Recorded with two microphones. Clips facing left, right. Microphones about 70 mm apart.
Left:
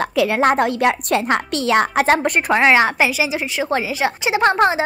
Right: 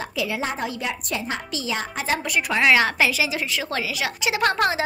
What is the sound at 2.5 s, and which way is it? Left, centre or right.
A woman's voice, left.